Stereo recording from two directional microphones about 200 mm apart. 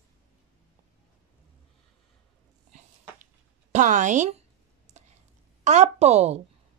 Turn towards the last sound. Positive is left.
turn(degrees=-35)  # may be behind; listen again after turning